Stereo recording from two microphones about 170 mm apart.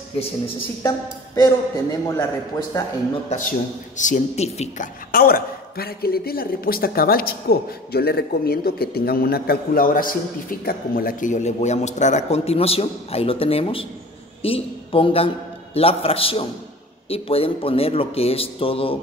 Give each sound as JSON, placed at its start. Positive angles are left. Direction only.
{"t": 0.8, "sound": "a man's voice", "side_deg": 20}
{"t": 3.3, "sound": "speech", "side_deg": 50}
{"t": 5.1, "sound": "a man's voice", "side_deg": 60}